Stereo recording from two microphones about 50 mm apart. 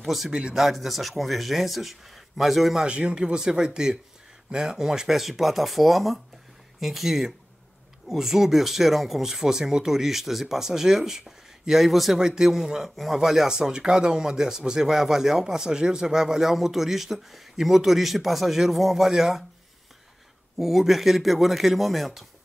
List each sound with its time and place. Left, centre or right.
0.0 s speech: centre
0.3 s speech: centre
0.7 s speech: centre
2.8 s speech: right
20.5 s speech: centre